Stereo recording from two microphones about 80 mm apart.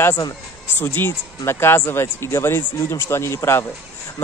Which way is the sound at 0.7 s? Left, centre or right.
Left.